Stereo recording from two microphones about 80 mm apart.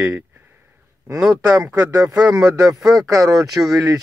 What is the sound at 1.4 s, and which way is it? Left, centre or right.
Speech, right.